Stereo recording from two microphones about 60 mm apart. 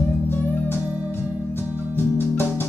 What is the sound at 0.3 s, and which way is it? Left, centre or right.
Music, left.